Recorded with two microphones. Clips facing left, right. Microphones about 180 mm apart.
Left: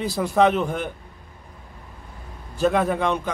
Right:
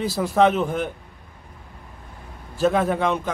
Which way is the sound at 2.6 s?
Centre (ahead or behind).